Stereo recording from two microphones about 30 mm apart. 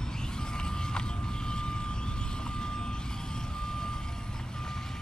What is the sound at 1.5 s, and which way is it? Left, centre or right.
Vehicle, left.